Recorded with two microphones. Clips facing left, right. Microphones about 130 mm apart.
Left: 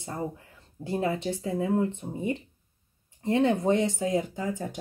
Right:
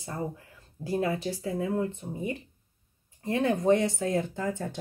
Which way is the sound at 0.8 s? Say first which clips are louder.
Even; 25° left (ahead or behind).